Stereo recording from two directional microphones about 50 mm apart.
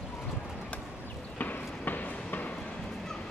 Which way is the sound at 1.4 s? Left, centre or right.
Left.